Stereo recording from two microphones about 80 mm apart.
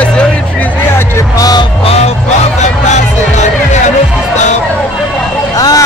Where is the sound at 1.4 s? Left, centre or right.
Left.